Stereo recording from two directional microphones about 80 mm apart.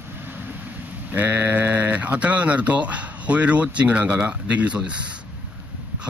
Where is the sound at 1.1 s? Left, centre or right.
Right.